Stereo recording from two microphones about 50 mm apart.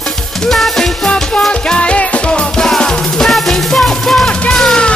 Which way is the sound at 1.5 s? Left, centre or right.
Left.